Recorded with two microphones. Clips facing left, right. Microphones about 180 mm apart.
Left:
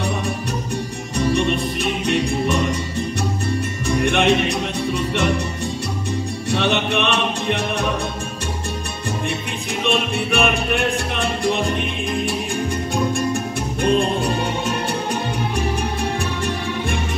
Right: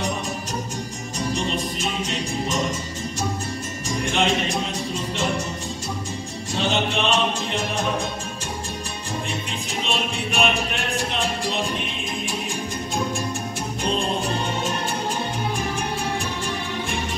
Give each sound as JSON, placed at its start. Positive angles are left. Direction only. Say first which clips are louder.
{"t": 1.1, "sound": "music", "louder": "left 7 dB", "side_deg": 60}
{"t": 3.9, "sound": "music", "louder": "left 6 dB", "side_deg": 65}
{"t": 6.5, "sound": "music", "louder": "left 3 dB", "side_deg": 60}
{"t": 9.8, "sound": "music", "louder": "left 8 dB", "side_deg": 60}
{"t": 13.8, "sound": "music", "louder": "left 6 dB", "side_deg": 55}